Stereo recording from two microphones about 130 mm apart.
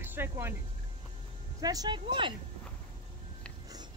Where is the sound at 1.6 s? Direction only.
30° right (ahead or behind).